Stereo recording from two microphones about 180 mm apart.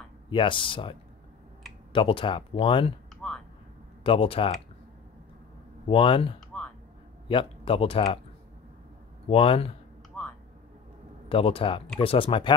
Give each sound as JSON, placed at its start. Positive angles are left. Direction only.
{"t": 0.3, "sound": "speech", "side_deg": 30}
{"t": 3.2, "sound": "a sound", "side_deg": 5}
{"t": 4.0, "sound": "speech", "side_deg": 30}
{"t": 5.9, "sound": "speech", "side_deg": 30}
{"t": 6.5, "sound": "music", "side_deg": 5}
{"t": 7.2, "sound": "speech", "side_deg": 30}
{"t": 9.3, "sound": "speech", "side_deg": 30}
{"t": 11.2, "sound": "speech", "side_deg": 30}